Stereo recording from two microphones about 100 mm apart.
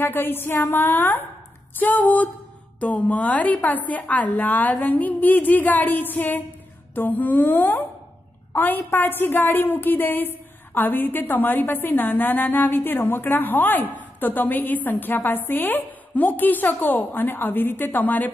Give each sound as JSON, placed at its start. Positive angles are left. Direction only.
{"t": 0.0, "sound": "a woman's voice", "side_deg": 20}